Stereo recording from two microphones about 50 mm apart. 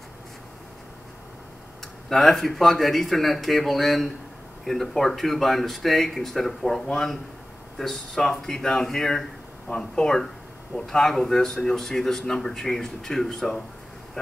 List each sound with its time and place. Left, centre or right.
2.0 s a man's voice: centre